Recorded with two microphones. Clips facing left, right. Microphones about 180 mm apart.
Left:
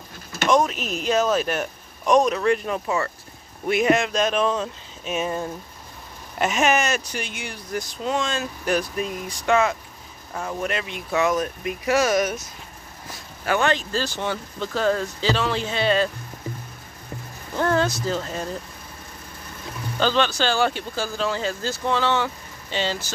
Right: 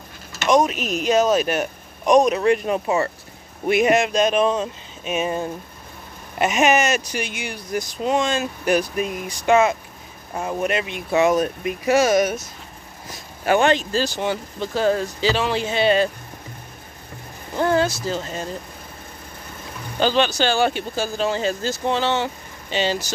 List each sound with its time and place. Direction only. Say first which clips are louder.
0.5 s speech: right 3 dB; 15° right (ahead or behind)
6.4 s speech: right 3 dB; 15° right (ahead or behind)
7.1 s speech: right 4 dB; 75° right (ahead or behind)
7.4 s speech: right 3 dB; 15° right (ahead or behind)
11.1 s speech: right 4 dB; 30° right (ahead or behind)
13.5 s speech: right 4 dB; 20° right (ahead or behind)
17.6 s a sound: right 2 dB; 5° right (ahead or behind)
18.0 s speech: even; 5° right (ahead or behind)
20.0 s speech: right 2 dB; 15° right (ahead or behind)